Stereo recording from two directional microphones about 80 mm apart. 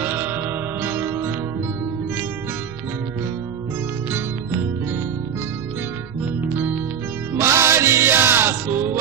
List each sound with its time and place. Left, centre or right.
0.0 s music: right
7.3 s music: right